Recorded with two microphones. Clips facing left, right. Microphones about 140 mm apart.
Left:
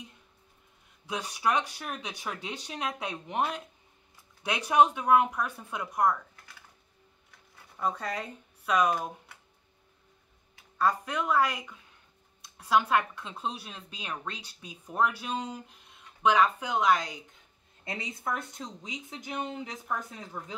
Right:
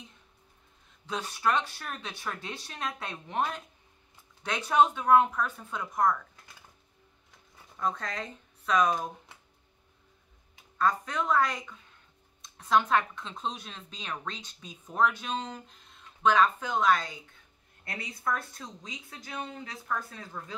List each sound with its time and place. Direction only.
1.0 s speech: 15° left (ahead or behind)
7.8 s speech: 10° left (ahead or behind)
10.8 s speech: 10° left (ahead or behind)